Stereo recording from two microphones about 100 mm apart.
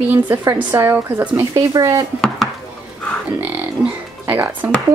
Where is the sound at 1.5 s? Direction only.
35° right (ahead or behind).